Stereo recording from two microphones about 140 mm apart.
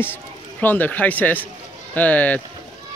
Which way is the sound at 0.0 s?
15° left (ahead or behind).